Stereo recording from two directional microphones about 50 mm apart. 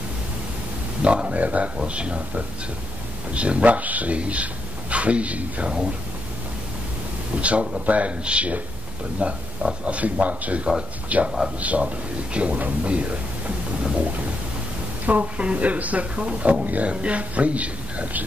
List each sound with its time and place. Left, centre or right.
1.0 s speech: right
7.3 s speech: right
15.0 s speech: right